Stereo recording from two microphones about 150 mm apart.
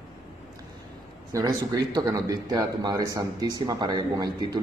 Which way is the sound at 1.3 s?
25° right (ahead or behind).